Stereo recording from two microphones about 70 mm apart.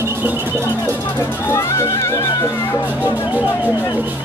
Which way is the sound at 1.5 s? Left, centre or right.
Left.